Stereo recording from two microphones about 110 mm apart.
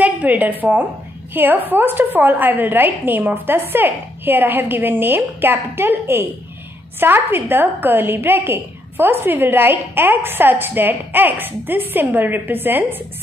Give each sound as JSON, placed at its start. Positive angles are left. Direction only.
{"t": 0.0, "sound": "a woman's voice", "side_deg": -15}